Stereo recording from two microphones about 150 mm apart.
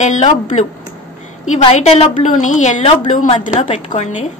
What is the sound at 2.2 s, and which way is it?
A woman's voice, 55° left (ahead or behind).